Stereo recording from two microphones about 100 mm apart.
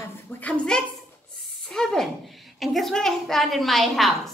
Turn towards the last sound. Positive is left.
turn(degrees=0)  # may be behind; listen again after turning